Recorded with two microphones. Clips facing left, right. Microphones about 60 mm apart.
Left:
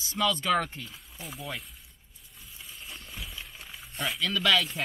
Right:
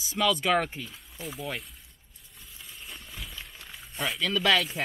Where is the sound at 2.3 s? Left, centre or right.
Centre.